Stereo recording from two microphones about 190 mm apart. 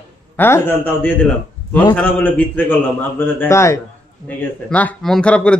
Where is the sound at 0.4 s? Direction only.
10° left (ahead or behind).